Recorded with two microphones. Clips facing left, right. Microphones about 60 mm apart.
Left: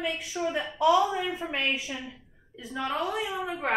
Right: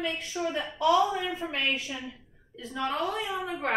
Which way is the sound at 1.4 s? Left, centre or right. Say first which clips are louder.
Even; centre.